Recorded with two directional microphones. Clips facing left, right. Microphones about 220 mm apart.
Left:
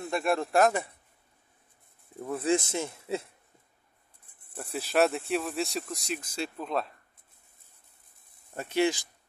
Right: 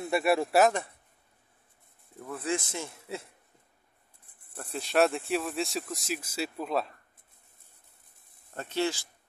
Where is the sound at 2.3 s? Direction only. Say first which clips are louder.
Left 5 dB; 25° left (ahead or behind).